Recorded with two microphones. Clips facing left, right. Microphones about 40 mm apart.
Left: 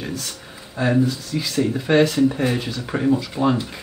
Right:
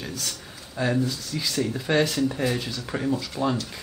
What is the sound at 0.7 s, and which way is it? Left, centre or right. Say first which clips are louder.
Speech: left 5 dB; centre.